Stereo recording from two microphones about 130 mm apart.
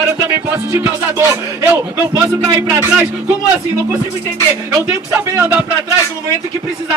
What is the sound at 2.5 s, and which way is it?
Speech, 20° right (ahead or behind).